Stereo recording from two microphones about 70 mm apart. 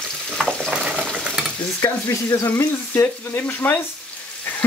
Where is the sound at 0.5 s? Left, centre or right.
Centre.